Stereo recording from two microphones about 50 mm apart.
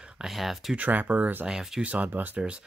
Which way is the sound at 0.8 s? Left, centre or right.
Right.